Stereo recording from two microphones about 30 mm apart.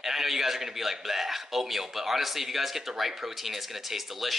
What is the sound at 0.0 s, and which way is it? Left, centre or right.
A man's voice, centre.